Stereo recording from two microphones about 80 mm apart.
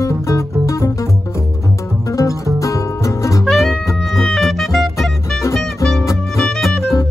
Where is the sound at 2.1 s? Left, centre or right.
Left.